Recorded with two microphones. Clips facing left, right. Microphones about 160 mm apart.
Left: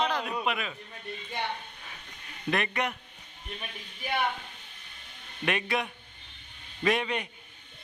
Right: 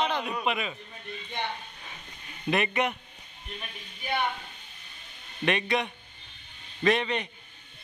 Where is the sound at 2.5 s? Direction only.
5° right (ahead or behind).